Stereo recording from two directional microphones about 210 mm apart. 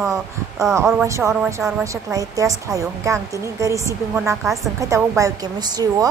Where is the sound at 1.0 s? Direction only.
15° right (ahead or behind).